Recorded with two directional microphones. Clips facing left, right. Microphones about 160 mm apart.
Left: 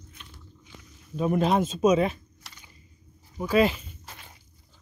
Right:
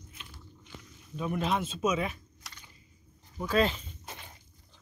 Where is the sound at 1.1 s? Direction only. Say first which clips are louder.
Left 7 dB; 40° left (ahead or behind).